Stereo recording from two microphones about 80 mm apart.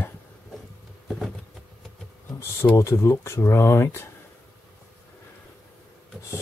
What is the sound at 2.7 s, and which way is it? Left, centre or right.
Speech, left.